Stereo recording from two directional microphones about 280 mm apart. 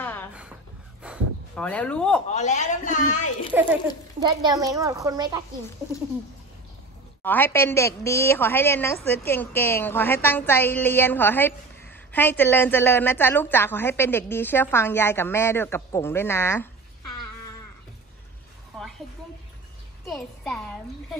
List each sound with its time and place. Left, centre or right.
0.0 s a sound: centre
2.2 s speech: left
4.2 s a child's voice: centre
7.2 s a woman's voice: centre
18.8 s a sound: centre
20.1 s speech: centre